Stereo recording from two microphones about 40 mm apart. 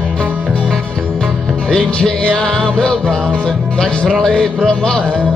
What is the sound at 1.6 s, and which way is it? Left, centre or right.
Music, centre.